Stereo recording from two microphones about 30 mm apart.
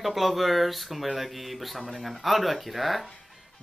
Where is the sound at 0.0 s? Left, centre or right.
Centre.